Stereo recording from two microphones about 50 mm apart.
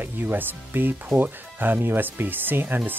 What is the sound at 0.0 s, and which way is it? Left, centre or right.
Speech, right.